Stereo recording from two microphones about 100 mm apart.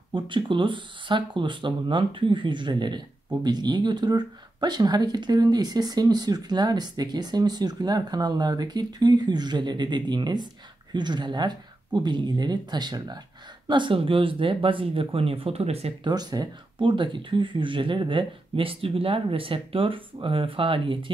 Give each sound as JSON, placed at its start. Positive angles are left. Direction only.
{"t": 0.1, "sound": "speech", "side_deg": -55}
{"t": 16.0, "sound": "speech", "side_deg": -40}